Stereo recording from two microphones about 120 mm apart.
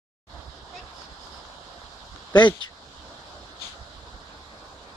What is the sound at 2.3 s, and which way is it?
Speech, 40° left (ahead or behind).